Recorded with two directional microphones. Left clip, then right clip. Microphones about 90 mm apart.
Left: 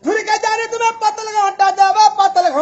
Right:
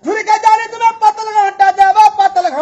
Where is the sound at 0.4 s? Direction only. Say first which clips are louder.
Right 6 dB; 40° left (ahead or behind).